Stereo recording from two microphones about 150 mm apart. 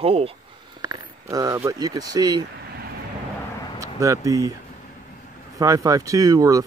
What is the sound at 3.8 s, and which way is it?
Speech, 20° right (ahead or behind).